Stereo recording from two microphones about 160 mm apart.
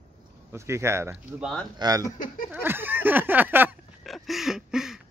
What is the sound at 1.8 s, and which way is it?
Speech, 20° right (ahead or behind).